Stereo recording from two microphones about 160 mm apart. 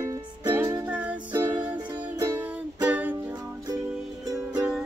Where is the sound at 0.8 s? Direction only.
10° right (ahead or behind).